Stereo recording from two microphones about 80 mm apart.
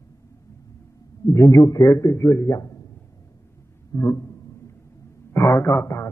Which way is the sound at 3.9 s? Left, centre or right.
Left.